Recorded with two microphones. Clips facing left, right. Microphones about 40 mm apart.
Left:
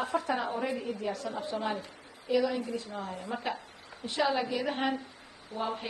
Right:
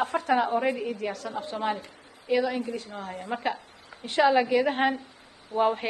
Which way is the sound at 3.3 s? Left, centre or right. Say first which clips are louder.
Right 6 dB; right.